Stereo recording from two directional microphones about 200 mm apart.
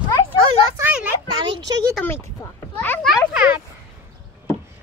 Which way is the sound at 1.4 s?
20° right (ahead or behind).